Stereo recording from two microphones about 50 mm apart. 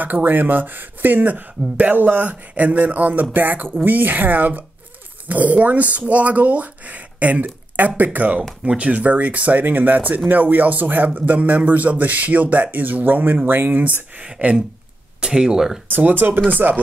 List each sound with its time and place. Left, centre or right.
0.0 s speech: right
14.2 s speech: right
16.1 s speech: right